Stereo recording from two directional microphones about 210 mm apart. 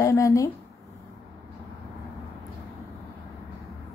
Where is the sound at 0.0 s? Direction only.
15° left (ahead or behind).